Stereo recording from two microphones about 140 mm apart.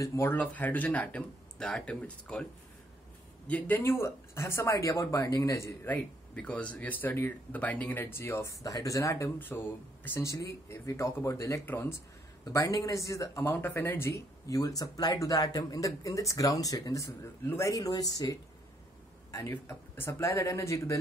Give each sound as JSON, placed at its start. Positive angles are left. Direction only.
{"t": 0.0, "sound": "speech", "side_deg": 20}
{"t": 3.4, "sound": "speech", "side_deg": 10}
{"t": 6.3, "sound": "speech", "side_deg": 10}